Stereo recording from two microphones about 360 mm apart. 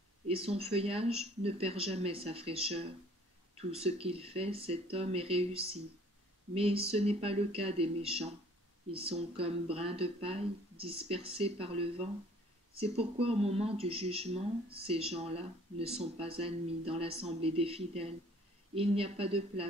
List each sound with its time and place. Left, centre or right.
0.3 s speech: centre